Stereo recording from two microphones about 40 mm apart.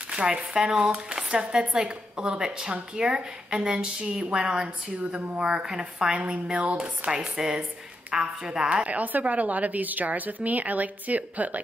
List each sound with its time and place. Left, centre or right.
0.1 s a sound: right
0.6 s speech: centre
4.1 s a woman's voice: right
4.4 s speech: right
6.1 s speech: right
8.6 s a woman's voice: right